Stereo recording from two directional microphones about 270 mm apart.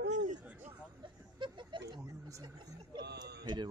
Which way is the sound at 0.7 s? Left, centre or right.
Centre.